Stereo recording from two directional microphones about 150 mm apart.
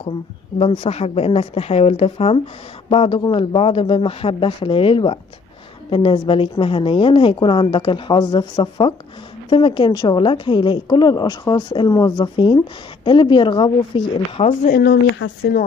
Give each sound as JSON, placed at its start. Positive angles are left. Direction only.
{"t": 0.6, "sound": "a woman's voice", "side_deg": 40}
{"t": 14.6, "sound": "speech", "side_deg": 80}